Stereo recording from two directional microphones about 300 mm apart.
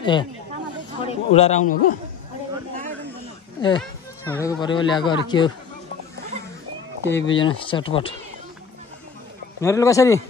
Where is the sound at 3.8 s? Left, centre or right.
Centre.